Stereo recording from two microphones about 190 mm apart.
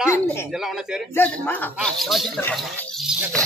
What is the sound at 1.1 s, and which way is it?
Speech, 10° left (ahead or behind).